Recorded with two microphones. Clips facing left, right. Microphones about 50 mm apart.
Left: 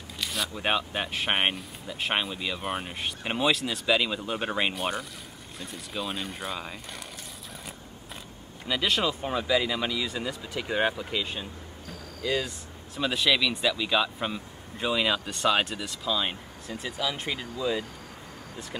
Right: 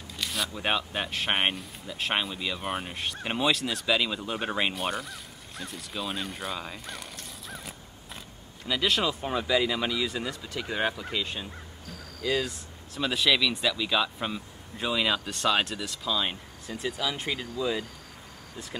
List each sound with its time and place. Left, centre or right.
0.2 s speech: centre
8.6 s speech: centre